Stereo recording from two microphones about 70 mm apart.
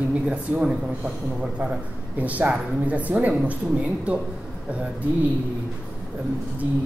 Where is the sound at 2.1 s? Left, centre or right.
Right.